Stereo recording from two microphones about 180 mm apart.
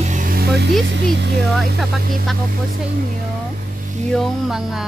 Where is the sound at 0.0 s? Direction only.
45° right (ahead or behind).